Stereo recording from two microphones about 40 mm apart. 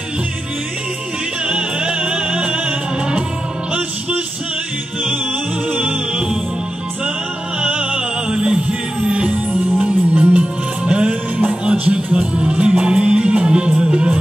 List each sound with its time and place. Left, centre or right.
1.5 s music: right
5.7 s music: right
7.6 s music: right
10.9 s music: right